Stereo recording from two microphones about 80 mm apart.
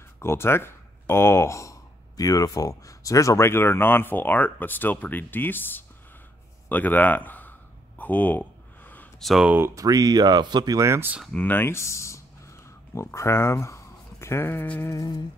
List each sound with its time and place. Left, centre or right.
0.2 s speech: left
8.0 s a sound: left
9.2 s speech: centre
9.8 s speech: right
10.8 s speech: right
11.3 s speech: left
14.9 s music: left